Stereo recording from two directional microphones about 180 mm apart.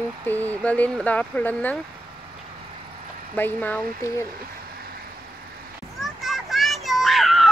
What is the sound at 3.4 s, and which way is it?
Speech, 10° left (ahead or behind).